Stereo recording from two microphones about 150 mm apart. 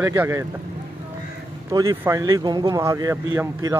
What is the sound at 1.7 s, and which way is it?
Speech, 20° right (ahead or behind).